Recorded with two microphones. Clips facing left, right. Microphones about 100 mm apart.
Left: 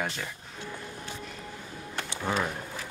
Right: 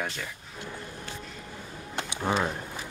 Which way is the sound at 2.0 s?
20° right (ahead or behind).